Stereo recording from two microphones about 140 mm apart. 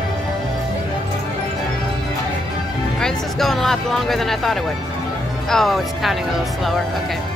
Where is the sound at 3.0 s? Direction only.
Centre (ahead or behind).